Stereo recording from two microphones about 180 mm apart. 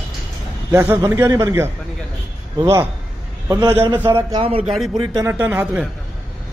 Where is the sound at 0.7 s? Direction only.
15° right (ahead or behind).